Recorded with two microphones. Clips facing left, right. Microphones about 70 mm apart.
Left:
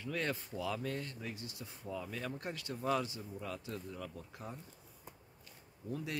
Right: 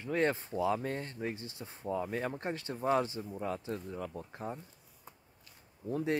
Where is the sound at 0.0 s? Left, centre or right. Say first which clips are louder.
Right 7 dB; right.